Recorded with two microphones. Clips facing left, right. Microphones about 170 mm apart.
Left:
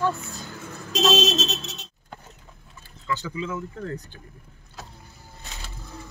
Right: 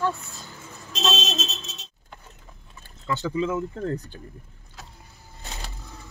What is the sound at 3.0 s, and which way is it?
Speech, 35° right (ahead or behind).